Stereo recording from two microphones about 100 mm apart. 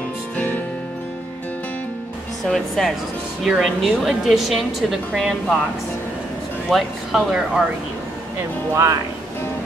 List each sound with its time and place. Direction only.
2.4 s a woman's voice: 5° left (ahead or behind)
6.7 s a woman's voice: centre (ahead or behind)
8.7 s speech: 30° right (ahead or behind)